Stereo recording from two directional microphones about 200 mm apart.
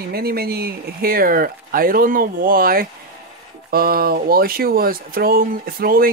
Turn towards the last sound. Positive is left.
turn(degrees=-45)  # may be behind; listen again after turning